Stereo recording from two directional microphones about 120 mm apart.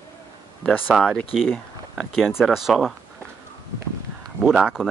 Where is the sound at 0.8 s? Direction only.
5° right (ahead or behind).